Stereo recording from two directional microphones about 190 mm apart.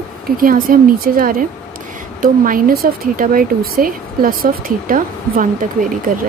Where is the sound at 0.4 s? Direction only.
50° right (ahead or behind).